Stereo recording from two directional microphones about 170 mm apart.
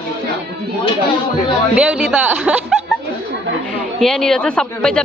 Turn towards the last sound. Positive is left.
turn(degrees=5)  # may be behind; listen again after turning